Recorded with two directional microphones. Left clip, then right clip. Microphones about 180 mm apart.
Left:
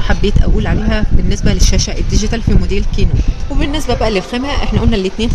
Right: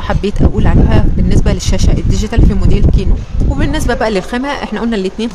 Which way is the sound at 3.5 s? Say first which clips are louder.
Right 1 dB; 5° right (ahead or behind).